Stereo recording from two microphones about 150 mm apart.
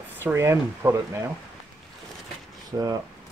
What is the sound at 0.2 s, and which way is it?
Speech, 15° right (ahead or behind).